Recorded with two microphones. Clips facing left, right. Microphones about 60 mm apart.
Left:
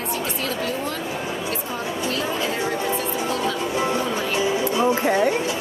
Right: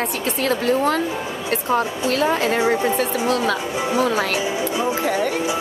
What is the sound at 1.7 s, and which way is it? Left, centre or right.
A woman's voice, right.